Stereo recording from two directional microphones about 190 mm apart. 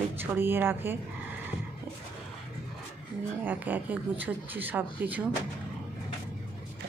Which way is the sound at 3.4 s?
10° right (ahead or behind).